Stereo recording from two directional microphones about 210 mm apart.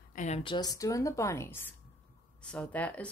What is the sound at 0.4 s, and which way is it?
Speech, 20° left (ahead or behind).